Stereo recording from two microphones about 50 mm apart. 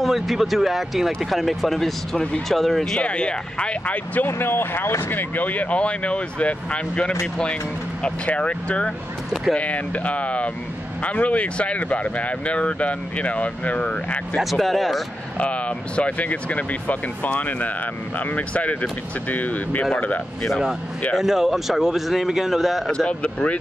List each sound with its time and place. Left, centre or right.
0.0 s speech: centre
3.0 s speech: left
4.3 s speech: left
5.1 s speech: left
14.4 s speech: centre
15.3 s speech: left
21.2 s speech: centre
22.8 s speech: centre